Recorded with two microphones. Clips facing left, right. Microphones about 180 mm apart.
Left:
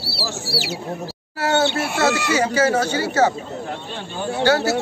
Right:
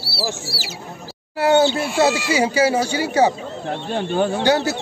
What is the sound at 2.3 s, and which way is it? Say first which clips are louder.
Speech: right 1 dB; 10° right (ahead or behind).